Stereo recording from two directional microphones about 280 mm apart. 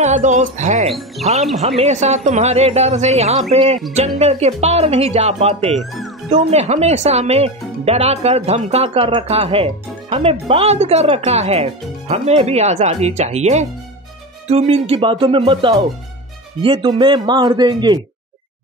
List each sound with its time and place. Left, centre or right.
0.0 s speech: right
5.8 s speech: centre
6.5 s speech: right